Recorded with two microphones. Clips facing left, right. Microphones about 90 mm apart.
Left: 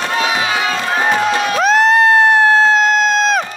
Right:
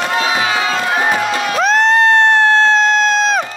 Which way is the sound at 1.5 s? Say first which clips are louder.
Even; centre (ahead or behind).